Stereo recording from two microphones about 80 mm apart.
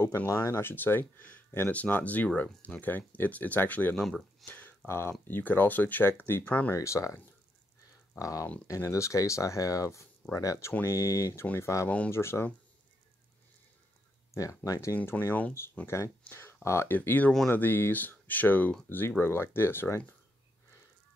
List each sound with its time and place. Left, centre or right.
0.3 s speech: left
3.9 s speech: centre
4.5 s a sound: left
4.8 s speech: left
8.2 s speech: left
14.3 s speech: left
15.0 s speech: left